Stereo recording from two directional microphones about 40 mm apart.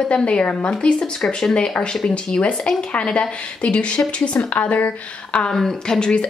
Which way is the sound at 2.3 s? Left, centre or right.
Left.